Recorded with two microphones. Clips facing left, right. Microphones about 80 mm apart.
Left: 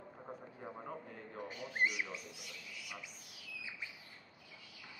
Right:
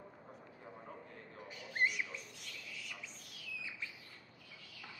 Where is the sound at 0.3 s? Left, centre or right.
Left.